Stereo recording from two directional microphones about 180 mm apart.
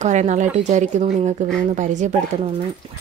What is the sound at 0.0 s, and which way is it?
A woman's voice, 40° right (ahead or behind).